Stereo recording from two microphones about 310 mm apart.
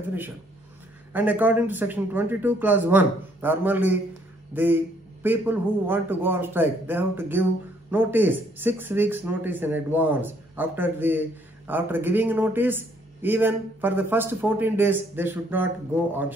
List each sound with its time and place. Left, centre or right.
1.1 s a man's voice: centre